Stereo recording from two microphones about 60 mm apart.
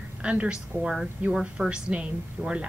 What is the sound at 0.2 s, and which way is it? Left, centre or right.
A woman's voice, centre.